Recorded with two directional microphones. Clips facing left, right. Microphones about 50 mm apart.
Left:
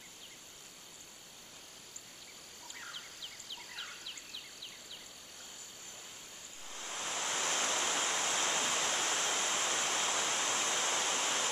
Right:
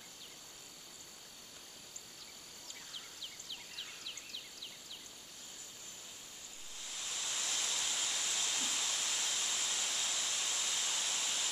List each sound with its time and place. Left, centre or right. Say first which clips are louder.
6.7 s waterfall: left 6 dB; left